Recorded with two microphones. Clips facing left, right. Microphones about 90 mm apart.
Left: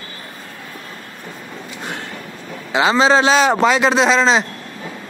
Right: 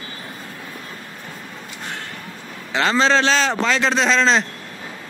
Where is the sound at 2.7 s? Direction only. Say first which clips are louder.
Left 4 dB; 10° left (ahead or behind).